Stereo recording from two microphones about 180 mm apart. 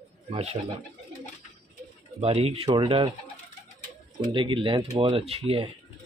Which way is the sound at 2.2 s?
35° right (ahead or behind).